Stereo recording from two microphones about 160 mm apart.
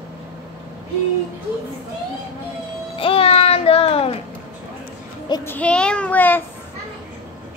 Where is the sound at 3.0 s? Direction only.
35° left (ahead or behind).